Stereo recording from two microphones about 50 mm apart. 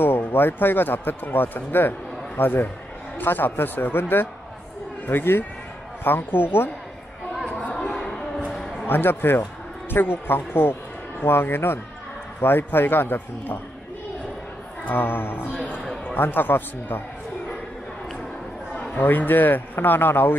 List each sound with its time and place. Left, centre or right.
0.3 s a man's voice: left
7.4 s chatter: left
7.9 s a sound: centre
8.5 s a sound: centre
8.8 s a man's voice: left
14.9 s a man's voice: left
18.9 s speech: left